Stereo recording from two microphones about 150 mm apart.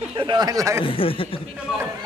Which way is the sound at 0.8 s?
35° left (ahead or behind).